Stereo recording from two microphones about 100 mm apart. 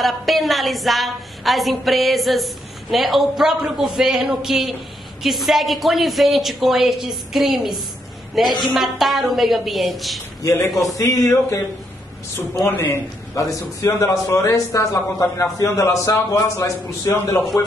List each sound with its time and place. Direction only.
0.0 s a woman's voice: centre (ahead or behind)
10.4 s a man's voice: 25° left (ahead or behind)
12.6 s a man's voice: 20° left (ahead or behind)
13.3 s a man's voice: 35° left (ahead or behind)